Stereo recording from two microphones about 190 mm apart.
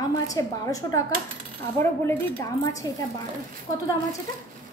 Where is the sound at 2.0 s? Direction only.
15° left (ahead or behind).